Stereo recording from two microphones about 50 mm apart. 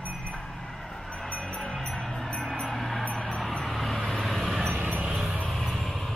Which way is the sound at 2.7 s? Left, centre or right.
Centre.